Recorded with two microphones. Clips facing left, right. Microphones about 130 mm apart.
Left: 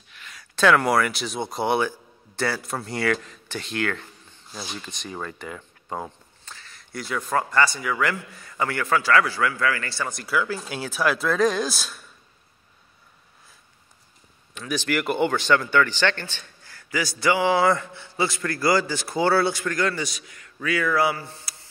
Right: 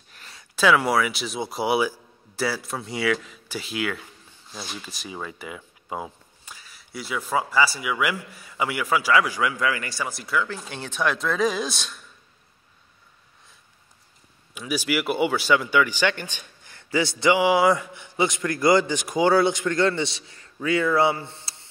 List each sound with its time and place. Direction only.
0.1 s a sound: 35° right (ahead or behind)
0.6 s a man's voice: 5° right (ahead or behind)
10.0 s speech: centre (ahead or behind)
14.5 s a man's voice: 10° right (ahead or behind); by 21.6 s 25° right (ahead or behind)